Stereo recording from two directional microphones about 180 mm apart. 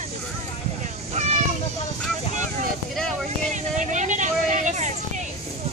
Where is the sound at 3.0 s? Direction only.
Centre (ahead or behind).